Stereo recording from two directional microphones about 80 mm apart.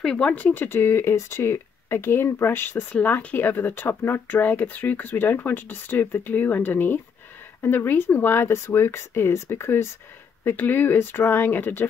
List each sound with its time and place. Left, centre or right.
0.0 s speech: centre; by 11.9 s left